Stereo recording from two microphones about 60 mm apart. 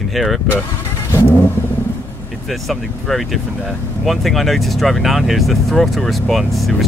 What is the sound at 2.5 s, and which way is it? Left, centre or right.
Speech, centre.